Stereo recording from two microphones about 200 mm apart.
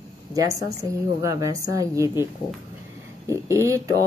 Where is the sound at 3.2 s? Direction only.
15° right (ahead or behind).